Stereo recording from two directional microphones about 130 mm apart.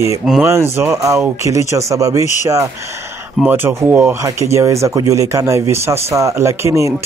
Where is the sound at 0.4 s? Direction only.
20° right (ahead or behind).